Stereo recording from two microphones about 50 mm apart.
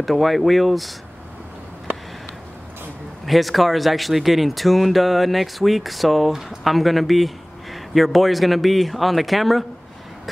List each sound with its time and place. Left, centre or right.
0.0 s speech: centre
3.3 s speech: centre